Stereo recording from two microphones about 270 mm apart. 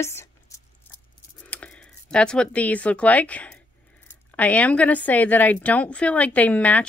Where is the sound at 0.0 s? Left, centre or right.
Centre.